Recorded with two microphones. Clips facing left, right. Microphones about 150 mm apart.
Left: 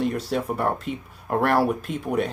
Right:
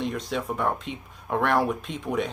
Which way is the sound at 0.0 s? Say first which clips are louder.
Left 4 dB; 5° left (ahead or behind).